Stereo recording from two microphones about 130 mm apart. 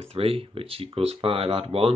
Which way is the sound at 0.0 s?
50° right (ahead or behind).